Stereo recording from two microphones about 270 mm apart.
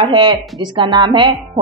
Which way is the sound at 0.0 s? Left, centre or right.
Centre.